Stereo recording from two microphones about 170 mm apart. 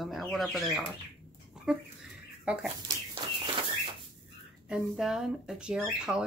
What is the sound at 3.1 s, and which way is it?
Bird, 30° right (ahead or behind).